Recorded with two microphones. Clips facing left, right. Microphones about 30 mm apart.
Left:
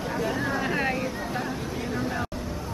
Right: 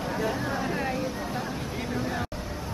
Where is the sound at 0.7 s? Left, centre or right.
Left.